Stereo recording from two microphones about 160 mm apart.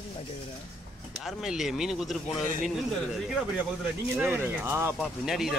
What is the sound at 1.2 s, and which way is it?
A man's voice, centre (ahead or behind).